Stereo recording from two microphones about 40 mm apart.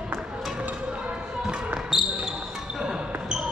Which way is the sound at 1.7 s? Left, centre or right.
Centre.